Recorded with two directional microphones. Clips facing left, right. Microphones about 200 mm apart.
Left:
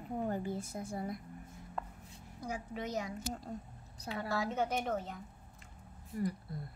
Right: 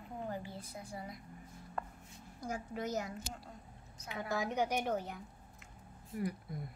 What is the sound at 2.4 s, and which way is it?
Speech, centre (ahead or behind).